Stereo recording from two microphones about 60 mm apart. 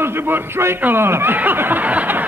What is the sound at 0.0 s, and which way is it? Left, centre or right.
A man's voice, right.